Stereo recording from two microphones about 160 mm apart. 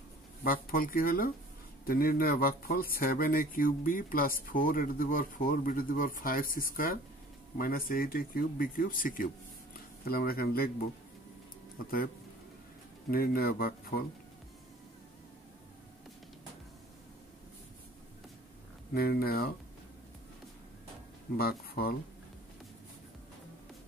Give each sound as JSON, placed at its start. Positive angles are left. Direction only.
{"t": 0.4, "sound": "speech", "side_deg": 65}
{"t": 13.1, "sound": "speech", "side_deg": 70}
{"t": 18.9, "sound": "speech", "side_deg": 70}
{"t": 21.4, "sound": "speech", "side_deg": 70}